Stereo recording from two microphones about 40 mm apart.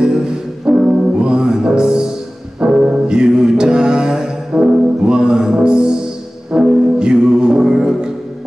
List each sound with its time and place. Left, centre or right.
0.0 s brass instrument: centre
1.2 s music: right